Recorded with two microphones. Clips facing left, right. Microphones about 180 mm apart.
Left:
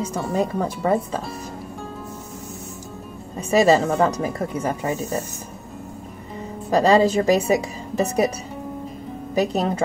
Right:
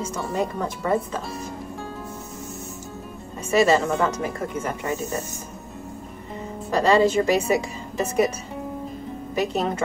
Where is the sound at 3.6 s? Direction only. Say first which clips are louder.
Left 3 dB; 35° left (ahead or behind).